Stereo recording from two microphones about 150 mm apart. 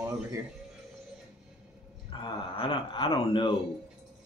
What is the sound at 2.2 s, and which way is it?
Speech, 35° left (ahead or behind).